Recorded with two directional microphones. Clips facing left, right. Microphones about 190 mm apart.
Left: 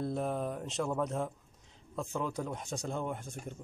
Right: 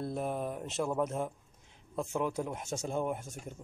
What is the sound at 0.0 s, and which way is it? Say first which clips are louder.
Speech: left 1 dB; 5° right (ahead or behind).